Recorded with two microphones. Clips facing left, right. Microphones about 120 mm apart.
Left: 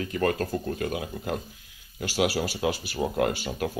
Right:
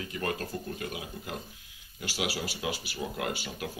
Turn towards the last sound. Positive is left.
turn(degrees=40)  # may be behind; listen again after turning